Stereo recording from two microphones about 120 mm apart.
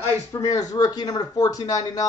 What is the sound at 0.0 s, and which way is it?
Speech, 25° left (ahead or behind).